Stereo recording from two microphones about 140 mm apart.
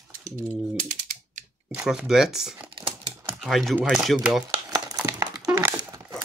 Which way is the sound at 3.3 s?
Centre (ahead or behind).